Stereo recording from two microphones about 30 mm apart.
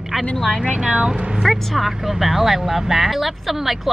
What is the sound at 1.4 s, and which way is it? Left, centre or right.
Speech, centre.